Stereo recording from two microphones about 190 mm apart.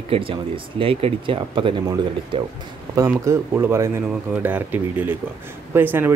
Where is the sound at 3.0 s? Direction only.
15° right (ahead or behind).